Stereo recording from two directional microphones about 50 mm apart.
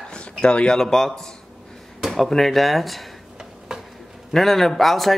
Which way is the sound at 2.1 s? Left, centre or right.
Centre.